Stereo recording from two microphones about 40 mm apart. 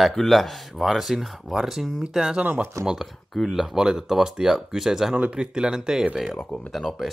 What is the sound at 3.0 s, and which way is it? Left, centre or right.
Speech, centre.